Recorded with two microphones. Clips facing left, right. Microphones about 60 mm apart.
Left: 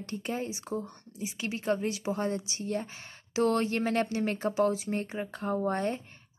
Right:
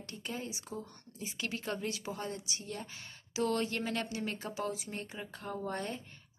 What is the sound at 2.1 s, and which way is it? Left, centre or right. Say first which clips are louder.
A woman's voice: left 8 dB; left.